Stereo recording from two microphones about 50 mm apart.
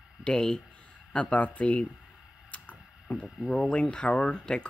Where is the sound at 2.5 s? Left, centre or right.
Left.